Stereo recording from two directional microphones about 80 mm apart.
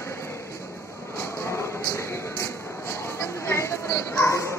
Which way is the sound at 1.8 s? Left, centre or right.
Left.